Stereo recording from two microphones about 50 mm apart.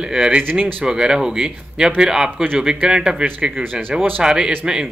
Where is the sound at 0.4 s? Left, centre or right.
Right.